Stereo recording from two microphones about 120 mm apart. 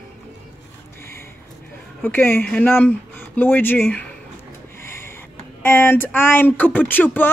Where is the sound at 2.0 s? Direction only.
15° left (ahead or behind).